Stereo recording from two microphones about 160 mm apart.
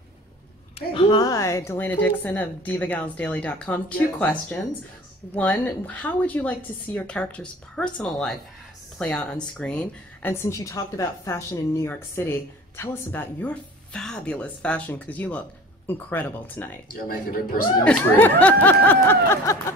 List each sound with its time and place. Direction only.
0.7 s a woman's voice: 30° left (ahead or behind); by 16.8 s 10° left (ahead or behind)
16.9 s speech: 60° left (ahead or behind)
17.8 s a woman's voice: 10° left (ahead or behind)